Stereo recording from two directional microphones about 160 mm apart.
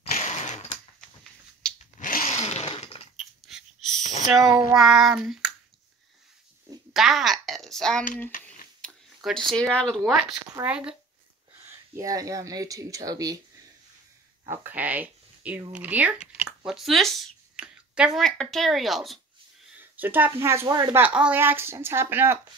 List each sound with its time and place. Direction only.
0.0 s sewing machine: 45° left (ahead or behind)
1.6 s a sound: 5° left (ahead or behind)
2.0 s chainsaw: 55° left (ahead or behind); by 3.0 s 40° left (ahead or behind)
3.2 s a sound: centre (ahead or behind)
4.0 s a sound: 50° left (ahead or behind)
4.7 s child singing: centre (ahead or behind)
6.9 s a child's voice: centre (ahead or behind)
8.3 s a sound: 60° left (ahead or behind)
8.8 s speech: centre (ahead or behind)
11.9 s speech: 20° right (ahead or behind)
14.5 s speech: 10° right (ahead or behind)
19.8 s speech: 10° right (ahead or behind)
21.0 s speech: 10° right (ahead or behind)